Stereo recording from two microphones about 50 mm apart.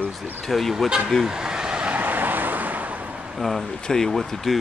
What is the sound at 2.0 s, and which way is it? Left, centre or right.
Vehicle, right.